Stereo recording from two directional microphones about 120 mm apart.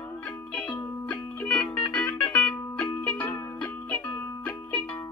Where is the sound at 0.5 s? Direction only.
10° left (ahead or behind).